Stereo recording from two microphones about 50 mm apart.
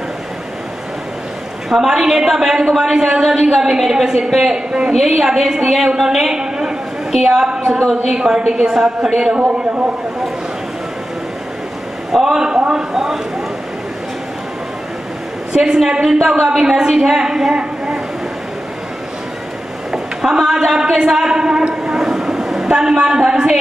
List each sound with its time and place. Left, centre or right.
1.7 s a woman's voice: centre
6.2 s a woman's voice: centre
9.3 s a man's voice: centre
12.1 s speech: centre
12.9 s a woman's voice: centre
15.5 s a woman's voice: centre
17.6 s a sound: centre
19.9 s a woman's voice: centre
20.9 s train: centre
22.7 s a woman's voice: centre